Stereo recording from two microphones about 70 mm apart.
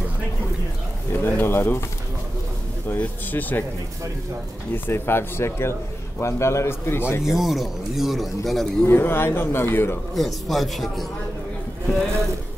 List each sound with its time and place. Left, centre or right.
1.1 s speech: left
3.0 s speech: left
4.7 s speech: left
7.3 s speech: centre
8.8 s speech: left
10.1 s speech: centre